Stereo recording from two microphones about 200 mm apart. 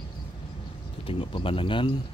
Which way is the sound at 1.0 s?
30° left (ahead or behind).